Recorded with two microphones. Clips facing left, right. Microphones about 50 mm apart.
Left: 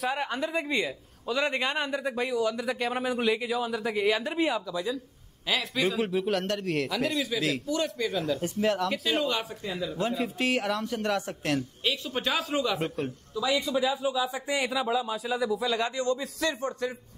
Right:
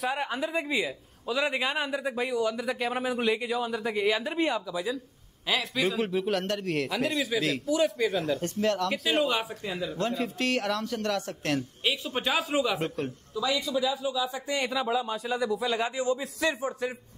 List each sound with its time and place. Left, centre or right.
0.0 s a man's voice: centre
8.4 s a man's voice: centre
8.9 s speech: centre
9.9 s a man's voice: centre
11.8 s speech: centre
12.8 s a man's voice: centre
13.6 s speech: left
14.7 s a man's voice: centre